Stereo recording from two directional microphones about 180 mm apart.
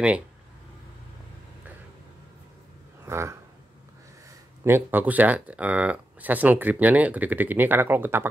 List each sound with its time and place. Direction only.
3.1 s speech: 15° right (ahead or behind)
4.6 s speech: 10° right (ahead or behind)